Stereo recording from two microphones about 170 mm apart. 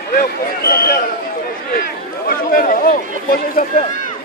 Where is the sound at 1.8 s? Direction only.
55° left (ahead or behind).